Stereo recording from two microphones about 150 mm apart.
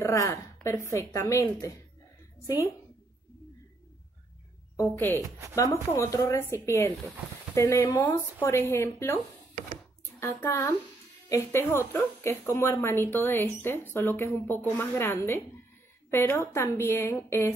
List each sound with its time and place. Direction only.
0.0 s a woman's voice: 20° left (ahead or behind)
4.7 s a woman's voice: 15° left (ahead or behind)
5.2 s a woman's voice: 20° right (ahead or behind)
5.6 s a woman's voice: 20° left (ahead or behind)
10.2 s a woman's voice: 15° left (ahead or behind)